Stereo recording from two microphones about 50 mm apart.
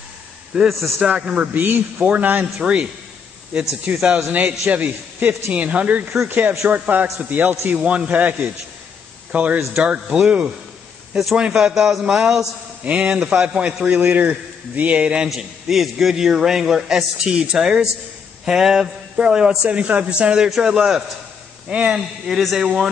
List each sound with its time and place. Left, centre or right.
0.7 s a man's voice: centre
1.0 s a man's voice: right
1.5 s a man's voice: right
2.0 s a man's voice: right
3.9 s a man's voice: centre
4.3 s a man's voice: right
6.2 s a man's voice: right; by 12.4 s centre
12.8 s a man's voice: right
15.2 s a man's voice: centre; by 20.4 s right
20.4 s a man's voice: centre
21.9 s a man's voice: centre